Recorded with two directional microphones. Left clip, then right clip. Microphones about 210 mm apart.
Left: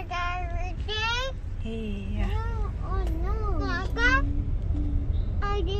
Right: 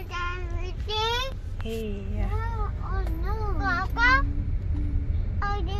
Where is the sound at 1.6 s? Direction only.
Centre (ahead or behind).